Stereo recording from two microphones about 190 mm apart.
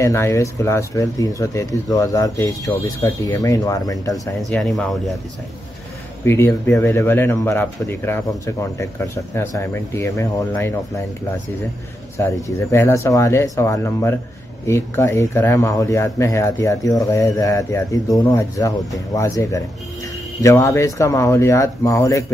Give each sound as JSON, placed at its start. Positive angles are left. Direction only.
{"t": 0.0, "sound": "speech", "side_deg": 15}
{"t": 4.4, "sound": "speech", "side_deg": 0}
{"t": 6.2, "sound": "speech", "side_deg": 15}
{"t": 12.4, "sound": "speech", "side_deg": 15}